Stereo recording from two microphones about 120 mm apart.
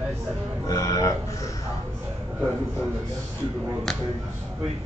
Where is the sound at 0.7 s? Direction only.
30° left (ahead or behind).